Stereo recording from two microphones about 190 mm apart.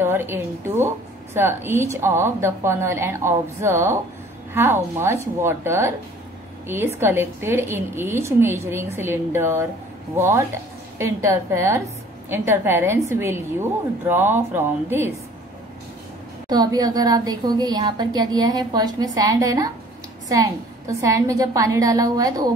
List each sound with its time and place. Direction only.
0.0 s a woman's voice: 10° right (ahead or behind)
16.4 s a woman's voice: 20° right (ahead or behind)